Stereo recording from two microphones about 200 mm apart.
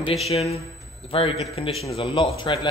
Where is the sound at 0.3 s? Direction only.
30° left (ahead or behind).